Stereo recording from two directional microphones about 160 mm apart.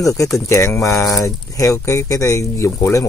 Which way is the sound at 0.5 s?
20° left (ahead or behind).